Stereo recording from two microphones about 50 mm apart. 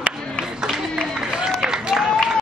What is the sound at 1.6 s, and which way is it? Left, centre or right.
Applause, centre.